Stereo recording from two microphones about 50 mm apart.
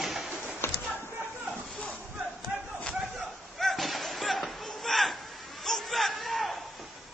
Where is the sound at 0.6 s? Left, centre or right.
Left.